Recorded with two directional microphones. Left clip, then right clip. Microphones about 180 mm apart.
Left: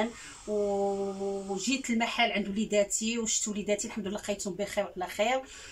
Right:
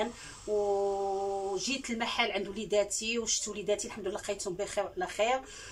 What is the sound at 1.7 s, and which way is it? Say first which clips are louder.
Speech: left 3 dB; 5° left (ahead or behind).